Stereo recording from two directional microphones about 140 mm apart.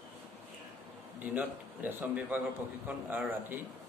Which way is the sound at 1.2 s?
10° right (ahead or behind).